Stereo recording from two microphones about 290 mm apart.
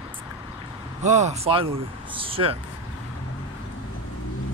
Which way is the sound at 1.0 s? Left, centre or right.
Right.